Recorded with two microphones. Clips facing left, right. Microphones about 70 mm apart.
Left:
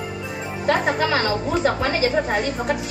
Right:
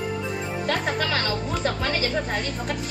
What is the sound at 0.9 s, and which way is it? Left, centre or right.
Speech, centre.